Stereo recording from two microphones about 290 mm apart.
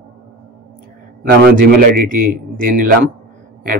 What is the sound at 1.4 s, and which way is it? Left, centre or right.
Speech, right.